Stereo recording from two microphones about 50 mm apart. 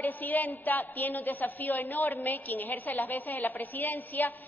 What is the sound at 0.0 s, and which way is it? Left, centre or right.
A man's voice, left.